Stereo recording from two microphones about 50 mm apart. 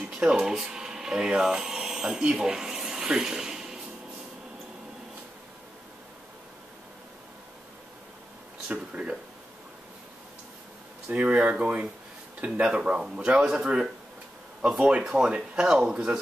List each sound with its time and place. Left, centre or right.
0.1 s speech: centre
8.6 s speech: right
11.1 s speech: right; by 16.2 s centre